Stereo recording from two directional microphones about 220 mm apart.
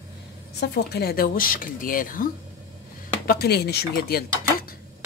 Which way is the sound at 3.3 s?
45° left (ahead or behind).